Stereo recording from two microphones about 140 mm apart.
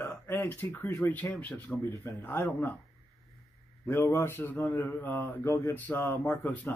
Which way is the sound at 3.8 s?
15° left (ahead or behind).